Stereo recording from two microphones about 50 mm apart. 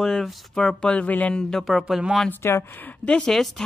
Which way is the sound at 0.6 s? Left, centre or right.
Centre.